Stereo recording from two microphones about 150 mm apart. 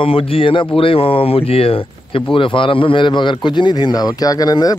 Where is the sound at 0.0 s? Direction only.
35° left (ahead or behind).